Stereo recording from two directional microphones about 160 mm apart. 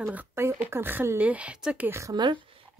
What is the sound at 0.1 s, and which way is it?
Speech, 10° right (ahead or behind).